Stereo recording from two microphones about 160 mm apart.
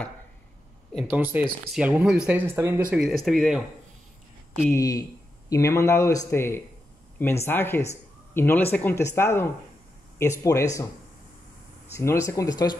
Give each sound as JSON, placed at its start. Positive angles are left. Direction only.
{"t": 1.0, "sound": "speech", "side_deg": -10}
{"t": 3.3, "sound": "speech", "side_deg": 0}
{"t": 4.6, "sound": "a man's voice", "side_deg": 20}
{"t": 12.0, "sound": "speech", "side_deg": 15}